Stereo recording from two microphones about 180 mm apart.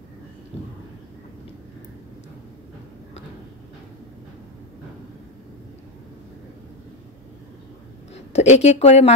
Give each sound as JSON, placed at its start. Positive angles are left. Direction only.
{"t": 8.1, "sound": "a woman's voice", "side_deg": 40}